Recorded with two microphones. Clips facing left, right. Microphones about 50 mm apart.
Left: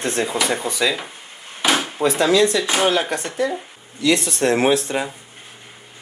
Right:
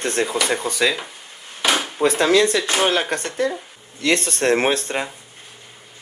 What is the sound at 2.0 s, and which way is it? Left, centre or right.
Speech, right.